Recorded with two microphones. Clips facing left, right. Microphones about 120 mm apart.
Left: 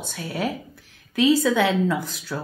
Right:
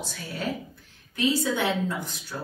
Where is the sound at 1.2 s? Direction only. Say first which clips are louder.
Left 7 dB; 90° left.